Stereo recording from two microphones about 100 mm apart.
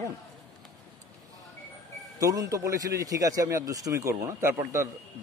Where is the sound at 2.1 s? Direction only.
35° right (ahead or behind).